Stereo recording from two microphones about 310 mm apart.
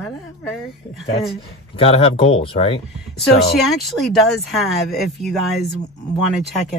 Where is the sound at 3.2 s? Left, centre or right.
Centre.